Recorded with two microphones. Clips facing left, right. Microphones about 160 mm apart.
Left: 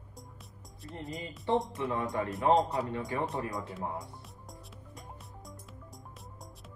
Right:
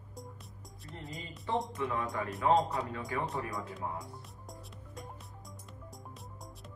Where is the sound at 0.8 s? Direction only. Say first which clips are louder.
Left 5 dB; centre (ahead or behind).